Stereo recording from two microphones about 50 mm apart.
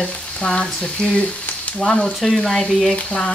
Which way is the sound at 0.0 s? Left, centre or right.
Centre.